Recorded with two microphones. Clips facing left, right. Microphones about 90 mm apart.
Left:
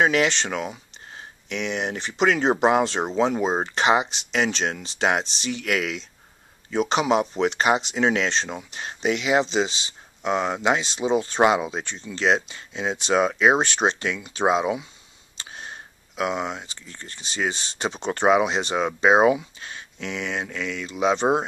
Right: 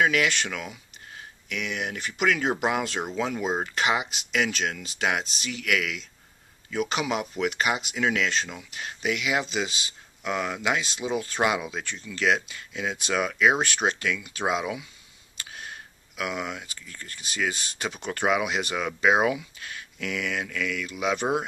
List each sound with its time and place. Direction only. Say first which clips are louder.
0.0 s speech: left 3 dB; 25° left (ahead or behind)